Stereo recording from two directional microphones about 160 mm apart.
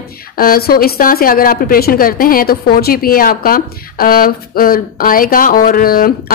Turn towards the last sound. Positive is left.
turn(degrees=65)  # may be behind; listen again after turning